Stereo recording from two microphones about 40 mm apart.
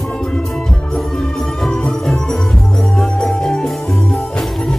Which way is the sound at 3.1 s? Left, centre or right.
Centre.